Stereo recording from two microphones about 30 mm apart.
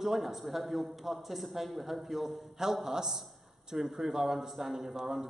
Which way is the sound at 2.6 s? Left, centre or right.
Centre.